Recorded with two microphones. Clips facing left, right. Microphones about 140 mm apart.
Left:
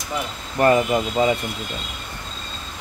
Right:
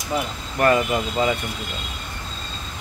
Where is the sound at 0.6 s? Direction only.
25° left (ahead or behind).